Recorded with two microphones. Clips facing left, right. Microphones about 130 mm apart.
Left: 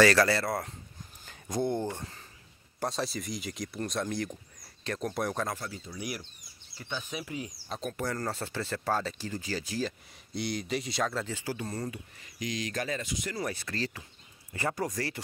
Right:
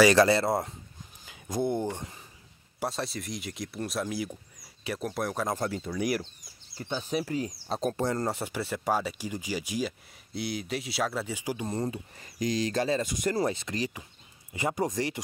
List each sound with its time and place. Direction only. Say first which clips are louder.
0.0 s speech: right 3 dB; 20° right (ahead or behind)
1.2 s a sound: right 1 dB; 10° right (ahead or behind)
2.8 s speech: even; centre (ahead or behind)
5.6 s speech: right 9 dB; 55° right (ahead or behind)
6.8 s speech: right 7 dB; 35° right (ahead or behind); by 9.9 s 15° right (ahead or behind)
10.3 s speech: even; 5° right (ahead or behind); by 12.0 s 25° right (ahead or behind)
12.2 s speech: right 7 dB; 40° right (ahead or behind)
13.0 s speech: right 7 dB; 50° right (ahead or behind)
13.4 s speech: right 5 dB; 20° right (ahead or behind)